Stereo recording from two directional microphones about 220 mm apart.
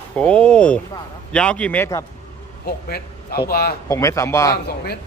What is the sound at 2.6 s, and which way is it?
Speech, 45° left (ahead or behind).